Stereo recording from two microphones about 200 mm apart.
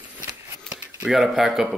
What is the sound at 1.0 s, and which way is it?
Speech, 5° right (ahead or behind).